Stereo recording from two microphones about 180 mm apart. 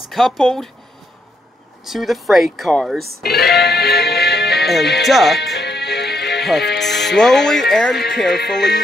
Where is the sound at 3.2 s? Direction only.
60° left (ahead or behind).